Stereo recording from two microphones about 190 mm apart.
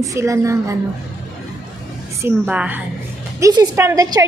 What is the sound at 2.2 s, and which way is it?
A woman's voice, 10° right (ahead or behind).